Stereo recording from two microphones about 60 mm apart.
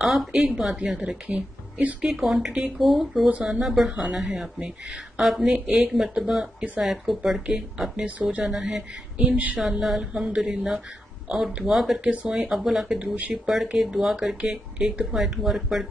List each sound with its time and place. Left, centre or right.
0.0 s speech: centre; by 2.0 s right
2.0 s speech: centre; by 8.5 s right
8.5 s speech: centre
12.0 s speech: right
12.3 s speech: centre
13.0 s speech: right; by 15.9 s centre